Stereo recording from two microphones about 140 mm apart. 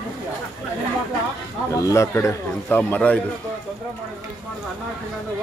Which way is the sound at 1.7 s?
25° left (ahead or behind).